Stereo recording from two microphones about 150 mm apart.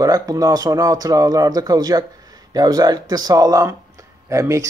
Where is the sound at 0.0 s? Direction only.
25° right (ahead or behind).